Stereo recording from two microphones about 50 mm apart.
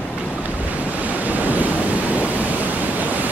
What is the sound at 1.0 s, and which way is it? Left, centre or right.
Waves, right.